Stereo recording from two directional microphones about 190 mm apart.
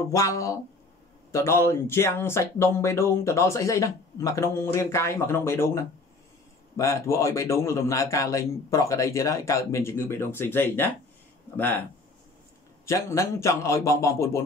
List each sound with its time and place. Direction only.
0.1 s speech: 15° left (ahead or behind)
12.8 s speech: 15° left (ahead or behind)